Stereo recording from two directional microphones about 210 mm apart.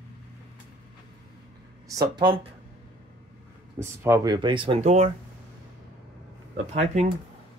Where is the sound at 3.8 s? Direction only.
15° right (ahead or behind); by 5.1 s 35° right (ahead or behind).